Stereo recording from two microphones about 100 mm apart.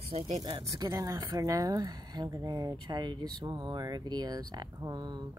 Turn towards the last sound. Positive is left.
turn(degrees=-45)  # may be behind; listen again after turning